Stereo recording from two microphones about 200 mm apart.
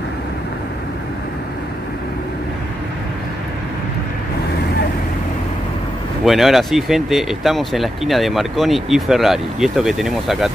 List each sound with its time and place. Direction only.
6.2 s speech: centre (ahead or behind)